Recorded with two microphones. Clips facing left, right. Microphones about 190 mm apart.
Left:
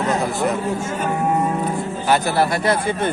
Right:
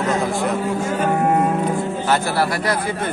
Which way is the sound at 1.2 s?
65° right (ahead or behind).